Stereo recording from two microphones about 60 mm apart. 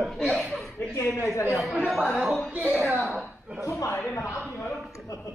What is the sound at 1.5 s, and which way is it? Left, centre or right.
Speech, centre.